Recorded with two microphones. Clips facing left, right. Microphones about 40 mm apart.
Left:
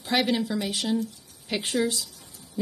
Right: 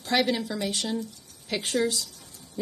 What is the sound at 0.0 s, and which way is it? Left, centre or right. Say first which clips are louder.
A woman's voice: even; centre.